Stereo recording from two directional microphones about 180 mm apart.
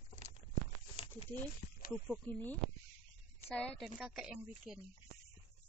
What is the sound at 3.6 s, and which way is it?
A woman's voice, 5° left (ahead or behind).